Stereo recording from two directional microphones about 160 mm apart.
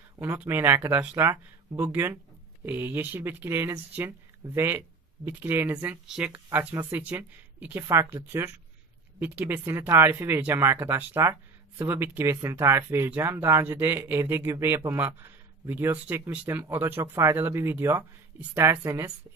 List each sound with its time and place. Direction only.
0.2 s speech: 10° right (ahead or behind)